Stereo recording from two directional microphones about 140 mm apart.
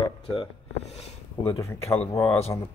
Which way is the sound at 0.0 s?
45° left (ahead or behind).